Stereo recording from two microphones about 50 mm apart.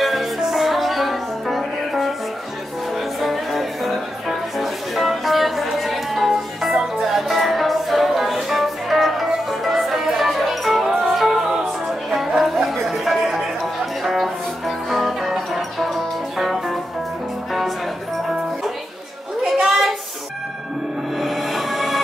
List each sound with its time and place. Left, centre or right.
0.0 s music: centre
3.2 s music: centre
19.4 s a sound: centre
21.2 s music: centre